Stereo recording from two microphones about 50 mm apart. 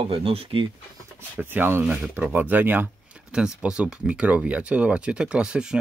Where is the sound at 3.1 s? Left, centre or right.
Centre.